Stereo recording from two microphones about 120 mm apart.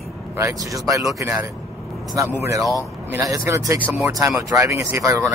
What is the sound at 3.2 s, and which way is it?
Speech, 30° right (ahead or behind).